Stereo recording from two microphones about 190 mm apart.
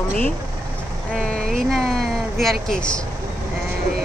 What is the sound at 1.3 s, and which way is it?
Speech, centre (ahead or behind).